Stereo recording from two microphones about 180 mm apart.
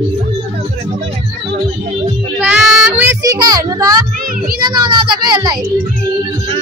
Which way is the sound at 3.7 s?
20° right (ahead or behind).